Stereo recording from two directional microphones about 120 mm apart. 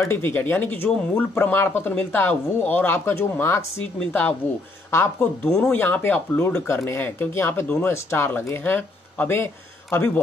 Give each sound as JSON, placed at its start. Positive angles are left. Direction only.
{"t": 0.0, "sound": "speech", "side_deg": 20}